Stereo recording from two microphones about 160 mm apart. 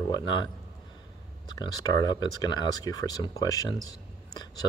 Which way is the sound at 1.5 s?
20° left (ahead or behind).